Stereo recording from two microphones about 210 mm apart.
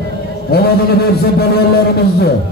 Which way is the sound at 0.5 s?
45° left (ahead or behind).